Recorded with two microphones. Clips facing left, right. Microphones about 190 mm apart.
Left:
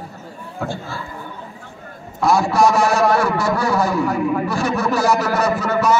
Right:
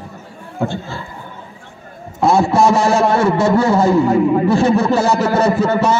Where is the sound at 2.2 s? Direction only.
25° right (ahead or behind).